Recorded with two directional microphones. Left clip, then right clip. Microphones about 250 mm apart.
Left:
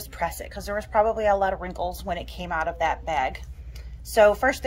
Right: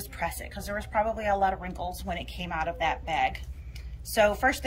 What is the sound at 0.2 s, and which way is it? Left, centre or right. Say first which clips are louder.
A woman's voice: left 4 dB; centre.